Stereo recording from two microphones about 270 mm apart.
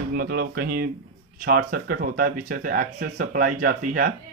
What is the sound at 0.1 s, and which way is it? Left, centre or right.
Speech, right.